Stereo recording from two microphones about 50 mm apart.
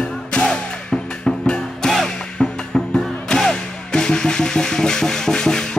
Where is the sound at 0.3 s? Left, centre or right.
Centre.